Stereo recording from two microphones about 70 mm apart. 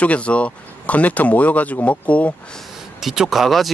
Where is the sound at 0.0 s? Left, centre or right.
Centre.